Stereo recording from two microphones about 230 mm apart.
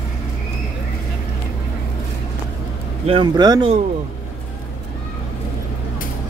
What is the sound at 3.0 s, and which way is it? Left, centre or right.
Speech, right.